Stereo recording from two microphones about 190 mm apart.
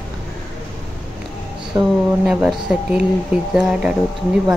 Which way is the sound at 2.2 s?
5° right (ahead or behind).